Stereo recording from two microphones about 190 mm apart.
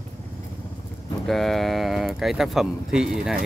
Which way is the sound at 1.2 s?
Centre (ahead or behind).